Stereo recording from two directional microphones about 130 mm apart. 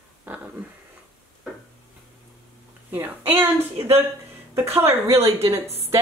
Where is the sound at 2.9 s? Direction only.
15° right (ahead or behind).